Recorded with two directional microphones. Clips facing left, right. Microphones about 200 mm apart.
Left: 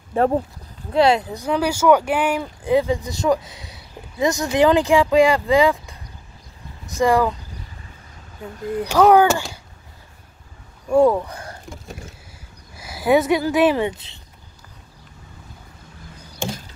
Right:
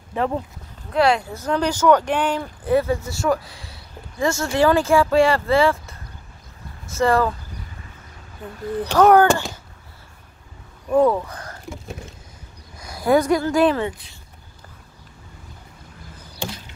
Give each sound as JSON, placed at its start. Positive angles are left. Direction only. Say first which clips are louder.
{"t": 0.9, "sound": "speech", "louder": "left 2 dB", "side_deg": 25}
{"t": 8.7, "sound": "speech", "louder": "even", "side_deg": 10}
{"t": 10.9, "sound": "speech", "louder": "left 2 dB", "side_deg": 10}
{"t": 11.7, "sound": "a sound", "louder": "right 3 dB", "side_deg": 0}
{"t": 12.7, "sound": "speech", "louder": "left 1 dB", "side_deg": 5}
{"t": 13.7, "sound": "speech", "louder": "left 3 dB", "side_deg": 20}